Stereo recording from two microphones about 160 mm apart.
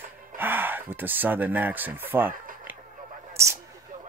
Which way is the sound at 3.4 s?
20° right (ahead or behind).